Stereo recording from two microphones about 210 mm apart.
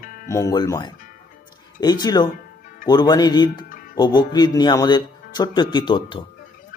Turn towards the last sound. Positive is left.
turn(degrees=25)  # may be behind; listen again after turning